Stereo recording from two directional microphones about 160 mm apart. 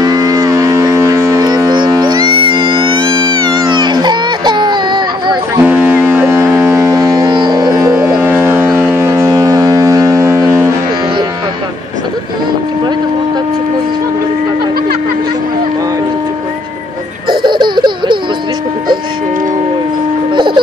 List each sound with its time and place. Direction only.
0.0 s foghorn: 25° right (ahead or behind)
3.7 s baby cry: 30° right (ahead or behind)
5.6 s foghorn: 10° right (ahead or behind)
17.3 s laughter: 30° right (ahead or behind)
20.3 s music: 30° right (ahead or behind)